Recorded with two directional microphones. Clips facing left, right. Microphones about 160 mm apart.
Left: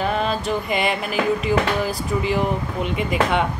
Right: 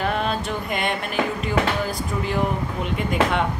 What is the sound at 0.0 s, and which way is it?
Music, centre (ahead or behind).